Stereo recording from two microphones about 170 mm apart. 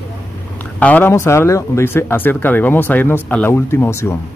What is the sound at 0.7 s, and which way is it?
Speech, 10° left (ahead or behind).